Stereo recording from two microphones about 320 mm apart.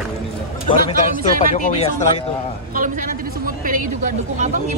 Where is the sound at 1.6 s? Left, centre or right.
Left.